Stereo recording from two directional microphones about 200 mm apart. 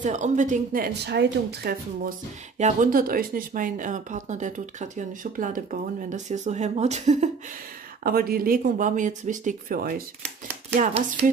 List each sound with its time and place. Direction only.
0.0 s speech: 40° right (ahead or behind)
1.0 s speech: 60° right (ahead or behind)
2.5 s speech: 35° right (ahead or behind)
8.0 s speech: 50° right (ahead or behind)
10.8 s speech: 30° right (ahead or behind)